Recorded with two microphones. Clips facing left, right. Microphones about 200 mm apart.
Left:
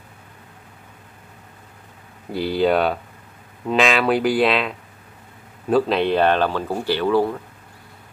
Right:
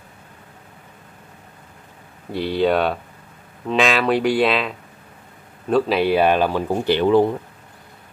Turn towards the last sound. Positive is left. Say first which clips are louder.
# right 3 dB
turn(degrees=-20)  # may be behind; listen again after turning